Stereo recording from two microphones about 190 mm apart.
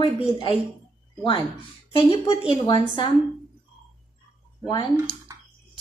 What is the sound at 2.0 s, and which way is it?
A woman's voice, 30° left (ahead or behind).